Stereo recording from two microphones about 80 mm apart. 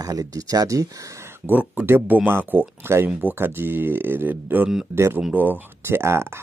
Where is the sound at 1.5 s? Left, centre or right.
Right.